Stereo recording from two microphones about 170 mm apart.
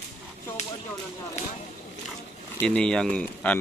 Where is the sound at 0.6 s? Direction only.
40° left (ahead or behind).